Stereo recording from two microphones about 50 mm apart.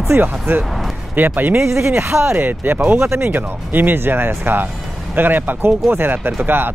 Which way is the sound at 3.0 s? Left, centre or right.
Right.